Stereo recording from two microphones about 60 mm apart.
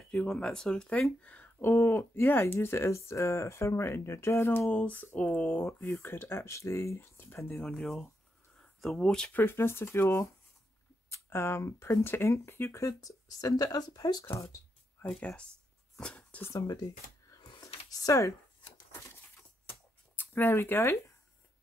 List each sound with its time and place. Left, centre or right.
0.1 s speech: centre
1.2 s speech: left
4.5 s speech: left
7.6 s speech: centre
9.3 s speech: left
12.7 s speech: left
14.2 s speech: left
15.0 s speech: centre
16.0 s a sound: centre
16.5 s speech: left
17.9 s a sound: left
20.2 s speech: left